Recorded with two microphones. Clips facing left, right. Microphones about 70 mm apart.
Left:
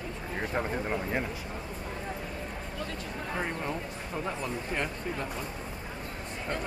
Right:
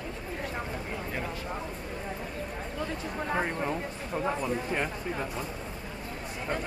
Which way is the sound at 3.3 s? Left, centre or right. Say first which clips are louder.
Right 4 dB; right.